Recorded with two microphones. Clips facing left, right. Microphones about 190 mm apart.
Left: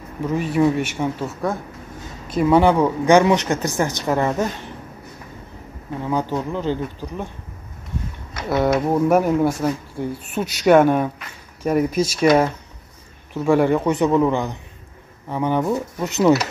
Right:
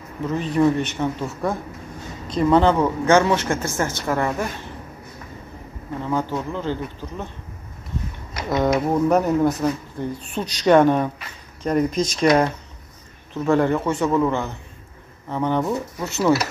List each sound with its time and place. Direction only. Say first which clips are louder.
0.2 s speech: left 1 dB; 10° left (ahead or behind)
6.0 s speech: left 2 dB; 15° left (ahead or behind)
8.5 s speech: left 1 dB; 5° left (ahead or behind)